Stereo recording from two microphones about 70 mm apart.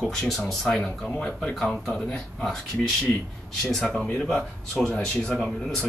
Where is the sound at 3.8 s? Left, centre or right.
Centre.